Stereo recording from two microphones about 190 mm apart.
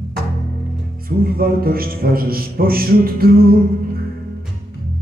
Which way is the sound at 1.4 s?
50° right (ahead or behind).